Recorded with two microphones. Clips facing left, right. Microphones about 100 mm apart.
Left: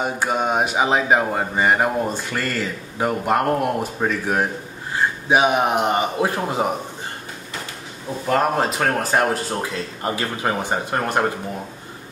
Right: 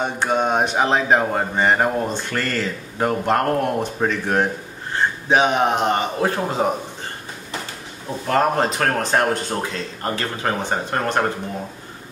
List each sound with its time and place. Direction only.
0.0 s speech: 5° left (ahead or behind)
8.3 s speech: 5° left (ahead or behind)